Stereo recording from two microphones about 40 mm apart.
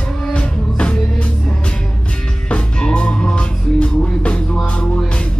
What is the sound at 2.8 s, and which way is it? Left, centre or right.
Music, left.